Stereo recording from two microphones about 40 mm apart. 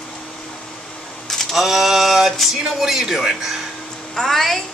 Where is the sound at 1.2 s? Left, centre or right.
Centre.